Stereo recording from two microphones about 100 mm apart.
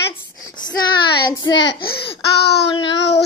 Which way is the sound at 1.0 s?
45° left (ahead or behind).